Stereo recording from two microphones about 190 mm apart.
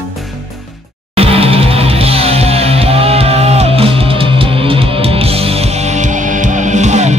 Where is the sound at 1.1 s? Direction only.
30° right (ahead or behind).